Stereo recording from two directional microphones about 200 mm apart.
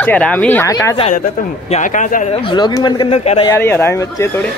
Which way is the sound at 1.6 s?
35° left (ahead or behind).